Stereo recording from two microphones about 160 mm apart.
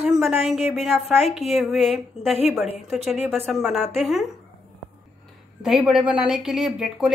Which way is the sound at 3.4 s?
Centre (ahead or behind).